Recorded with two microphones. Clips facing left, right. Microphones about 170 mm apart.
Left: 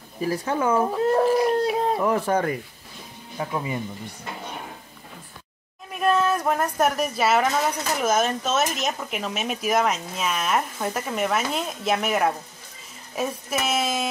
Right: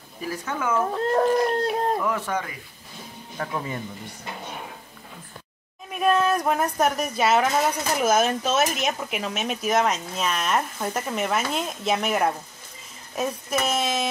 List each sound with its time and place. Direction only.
0.2 s speech: 35° left (ahead or behind)
0.9 s speech: 5° left (ahead or behind)
2.0 s speech: 35° left (ahead or behind)
3.3 s speech: 10° left (ahead or behind)
5.9 s speech: centre (ahead or behind)